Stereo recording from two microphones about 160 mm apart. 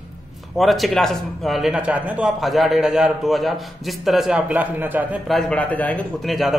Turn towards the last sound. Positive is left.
turn(degrees=0)  # may be behind; listen again after turning